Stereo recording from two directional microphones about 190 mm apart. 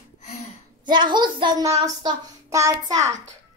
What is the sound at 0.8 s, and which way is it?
Child singing, 25° right (ahead or behind).